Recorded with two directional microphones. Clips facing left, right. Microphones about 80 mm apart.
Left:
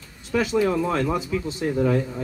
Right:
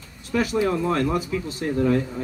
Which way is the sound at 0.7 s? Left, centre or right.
Centre.